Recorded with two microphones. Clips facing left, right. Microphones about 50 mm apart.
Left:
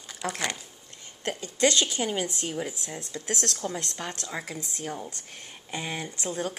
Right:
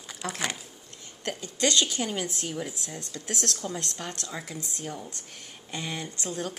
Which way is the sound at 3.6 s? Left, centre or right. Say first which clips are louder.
Left 1 dB; left.